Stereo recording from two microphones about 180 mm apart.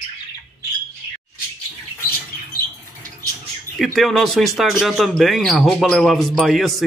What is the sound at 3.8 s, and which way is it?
Speech, centre (ahead or behind).